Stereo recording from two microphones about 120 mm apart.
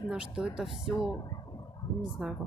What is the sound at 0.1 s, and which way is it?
Speech, 10° right (ahead or behind).